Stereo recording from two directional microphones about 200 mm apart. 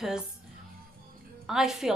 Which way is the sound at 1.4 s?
Centre (ahead or behind).